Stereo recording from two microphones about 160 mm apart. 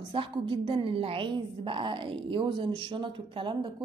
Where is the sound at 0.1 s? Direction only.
30° right (ahead or behind).